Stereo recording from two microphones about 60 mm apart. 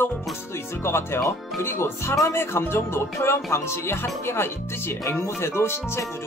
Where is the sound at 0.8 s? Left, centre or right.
Left.